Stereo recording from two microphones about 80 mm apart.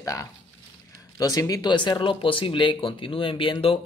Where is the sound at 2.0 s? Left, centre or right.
Left.